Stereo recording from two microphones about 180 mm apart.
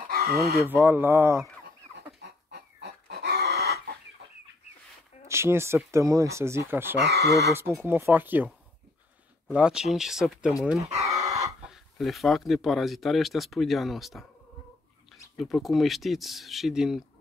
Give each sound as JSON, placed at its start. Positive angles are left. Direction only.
{"t": 0.1, "sound": "a sound", "side_deg": -55}
{"t": 0.6, "sound": "speech", "side_deg": -10}
{"t": 2.2, "sound": "chicken", "side_deg": -75}
{"t": 5.3, "sound": "speech", "side_deg": -15}
{"t": 7.0, "sound": "speech", "side_deg": -65}
{"t": 7.2, "sound": "speech", "side_deg": 15}
{"t": 7.5, "sound": "speech", "side_deg": -10}
{"t": 9.5, "sound": "speech", "side_deg": -5}
{"t": 11.0, "sound": "chicken", "side_deg": -15}
{"t": 11.6, "sound": "speech", "side_deg": 0}
{"t": 15.3, "sound": "speech", "side_deg": 0}